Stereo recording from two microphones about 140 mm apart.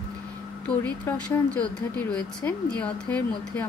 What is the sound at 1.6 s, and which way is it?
A woman's voice, 10° left (ahead or behind).